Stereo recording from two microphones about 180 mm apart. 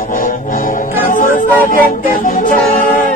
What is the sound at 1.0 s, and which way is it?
Music, 45° left (ahead or behind).